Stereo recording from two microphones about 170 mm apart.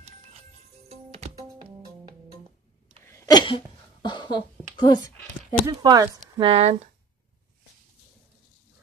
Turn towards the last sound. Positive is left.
turn(degrees=-40)  # may be behind; listen again after turning